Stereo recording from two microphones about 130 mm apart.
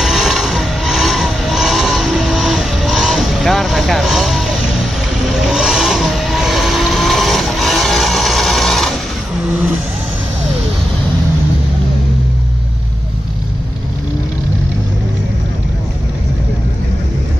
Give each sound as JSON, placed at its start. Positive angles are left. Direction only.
{"t": 0.0, "sound": "vehicle", "side_deg": 0}